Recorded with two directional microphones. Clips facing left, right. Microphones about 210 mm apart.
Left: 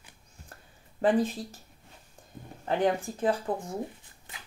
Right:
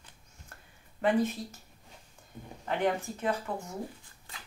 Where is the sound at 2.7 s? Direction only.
30° left (ahead or behind).